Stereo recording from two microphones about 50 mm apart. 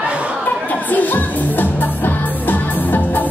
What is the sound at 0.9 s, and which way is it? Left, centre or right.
Music, left.